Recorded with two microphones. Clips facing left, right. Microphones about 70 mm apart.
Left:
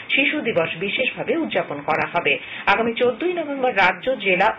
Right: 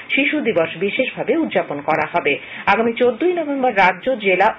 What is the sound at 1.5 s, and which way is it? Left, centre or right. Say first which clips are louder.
Speech: right 3 dB; centre.